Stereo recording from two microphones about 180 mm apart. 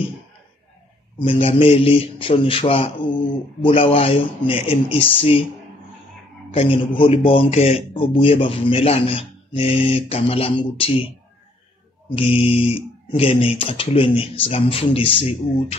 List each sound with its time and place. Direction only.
1.2 s a man's voice: 30° left (ahead or behind)
6.5 s a man's voice: 30° left (ahead or behind)
12.2 s a man's voice: 35° left (ahead or behind)